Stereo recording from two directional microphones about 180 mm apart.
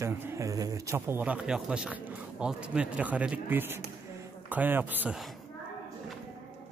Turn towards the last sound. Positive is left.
turn(degrees=-5)  # may be behind; listen again after turning